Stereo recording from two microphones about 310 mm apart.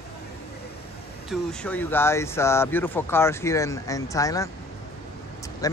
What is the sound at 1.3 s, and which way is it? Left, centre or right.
Speech, centre.